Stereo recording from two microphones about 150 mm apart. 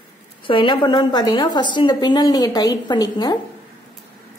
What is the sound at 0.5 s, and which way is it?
A woman's voice, 30° left (ahead or behind).